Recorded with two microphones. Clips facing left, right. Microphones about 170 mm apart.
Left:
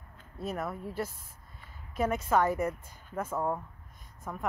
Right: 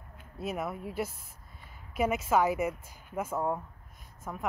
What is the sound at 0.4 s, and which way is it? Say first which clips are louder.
Speech: right 1 dB; 5° right (ahead or behind).